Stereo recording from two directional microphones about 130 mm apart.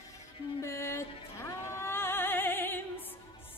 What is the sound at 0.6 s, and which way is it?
Music, 20° left (ahead or behind).